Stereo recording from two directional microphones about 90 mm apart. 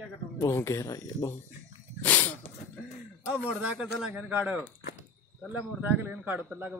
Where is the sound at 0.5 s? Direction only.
35° left (ahead or behind).